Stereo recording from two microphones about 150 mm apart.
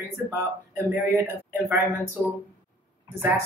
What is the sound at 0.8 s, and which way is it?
Speech, 15° right (ahead or behind).